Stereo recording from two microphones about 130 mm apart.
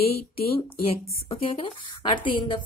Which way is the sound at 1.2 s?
45° left (ahead or behind).